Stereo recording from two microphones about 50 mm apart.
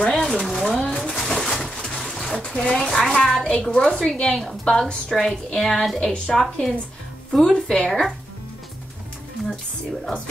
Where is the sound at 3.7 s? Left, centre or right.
Centre.